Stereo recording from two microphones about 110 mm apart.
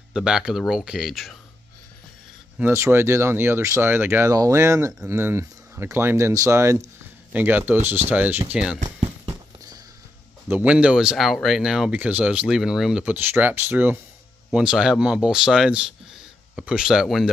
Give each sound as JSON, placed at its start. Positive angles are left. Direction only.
{"t": 0.1, "sound": "speech", "side_deg": -5}
{"t": 2.6, "sound": "speech", "side_deg": -25}
{"t": 10.5, "sound": "speech", "side_deg": -10}